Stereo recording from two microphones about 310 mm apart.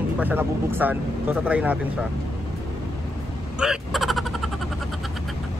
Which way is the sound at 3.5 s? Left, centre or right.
Centre.